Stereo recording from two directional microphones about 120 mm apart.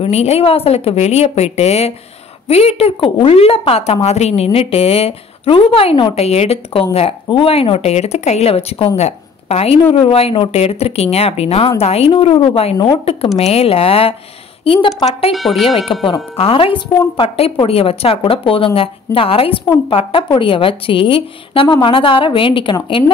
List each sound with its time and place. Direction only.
0.0 s a woman's voice: 60° left (ahead or behind)
12.7 s a woman's voice: 35° left (ahead or behind)
13.4 s a woman's voice: 55° left (ahead or behind)
15.3 s speech: centre (ahead or behind)
15.9 s a woman's voice: 45° left (ahead or behind)